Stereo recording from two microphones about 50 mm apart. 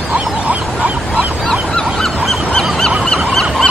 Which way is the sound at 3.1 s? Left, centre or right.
Centre.